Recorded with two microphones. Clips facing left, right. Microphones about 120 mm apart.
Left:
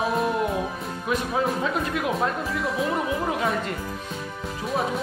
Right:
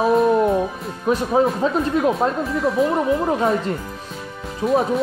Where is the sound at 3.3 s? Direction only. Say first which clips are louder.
Right 6 dB; 30° right (ahead or behind).